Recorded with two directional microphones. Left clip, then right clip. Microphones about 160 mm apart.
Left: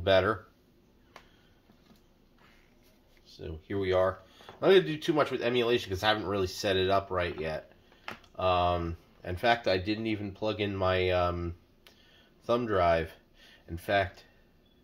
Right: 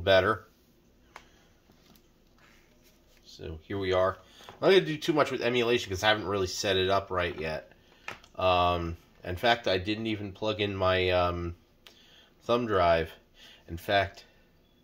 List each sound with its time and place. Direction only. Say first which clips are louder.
0.0 s speech: right 2 dB; 10° right (ahead or behind)
3.3 s speech: even; 15° right (ahead or behind)
4.6 s speech: even; 25° right (ahead or behind)